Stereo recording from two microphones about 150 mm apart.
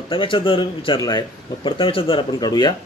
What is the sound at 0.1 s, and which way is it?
A man's voice, 35° left (ahead or behind).